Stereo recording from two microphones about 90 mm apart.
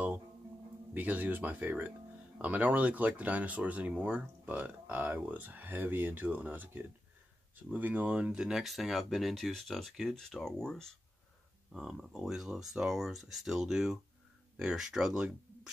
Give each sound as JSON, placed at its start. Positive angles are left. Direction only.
{"t": 0.9, "sound": "speech", "side_deg": -20}